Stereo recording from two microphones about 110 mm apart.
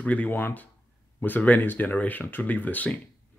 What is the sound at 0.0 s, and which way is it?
A man's voice, 15° left (ahead or behind).